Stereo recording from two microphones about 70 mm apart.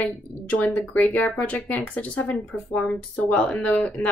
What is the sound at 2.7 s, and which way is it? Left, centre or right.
Speech, centre.